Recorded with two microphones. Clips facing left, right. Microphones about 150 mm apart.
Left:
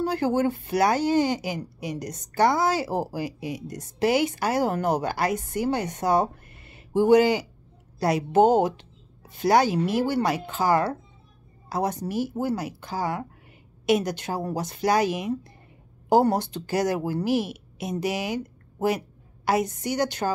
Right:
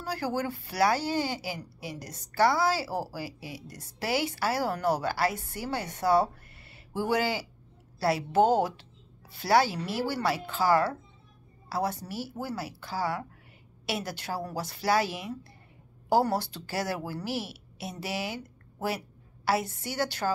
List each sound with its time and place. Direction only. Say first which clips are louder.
0.0 s a woman's voice: left 8 dB; 20° left (ahead or behind)